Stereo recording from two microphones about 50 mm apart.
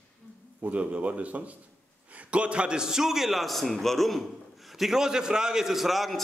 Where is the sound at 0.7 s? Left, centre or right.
Right.